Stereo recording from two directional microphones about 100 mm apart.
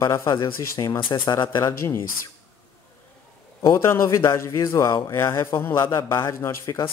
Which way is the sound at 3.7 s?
25° left (ahead or behind).